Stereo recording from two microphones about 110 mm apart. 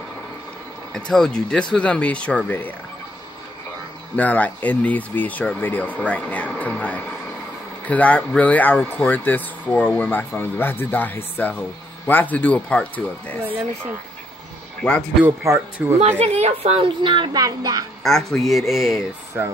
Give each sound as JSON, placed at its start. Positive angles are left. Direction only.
{"t": 0.9, "sound": "speech", "side_deg": 5}
{"t": 4.2, "sound": "speech", "side_deg": 15}
{"t": 14.8, "sound": "a man's voice", "side_deg": 10}
{"t": 15.4, "sound": "speech", "side_deg": -30}
{"t": 15.8, "sound": "a woman's voice", "side_deg": -15}
{"t": 16.3, "sound": "a woman's voice", "side_deg": -75}
{"t": 17.3, "sound": "speech", "side_deg": -35}
{"t": 18.0, "sound": "a woman's voice", "side_deg": 5}